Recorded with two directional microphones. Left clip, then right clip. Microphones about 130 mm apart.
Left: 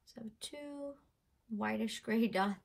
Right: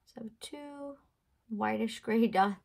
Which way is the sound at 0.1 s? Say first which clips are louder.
Right 3 dB; 55° right (ahead or behind).